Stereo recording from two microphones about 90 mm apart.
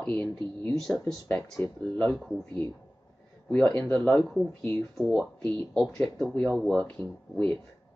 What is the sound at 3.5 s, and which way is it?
Speech, 15° left (ahead or behind).